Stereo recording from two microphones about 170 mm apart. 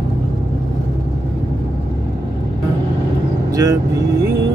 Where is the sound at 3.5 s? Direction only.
20° right (ahead or behind).